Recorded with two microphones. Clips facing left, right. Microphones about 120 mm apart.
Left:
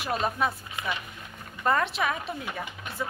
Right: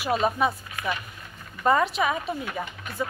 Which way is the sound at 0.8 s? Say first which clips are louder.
Right 3 dB; 20° left (ahead or behind).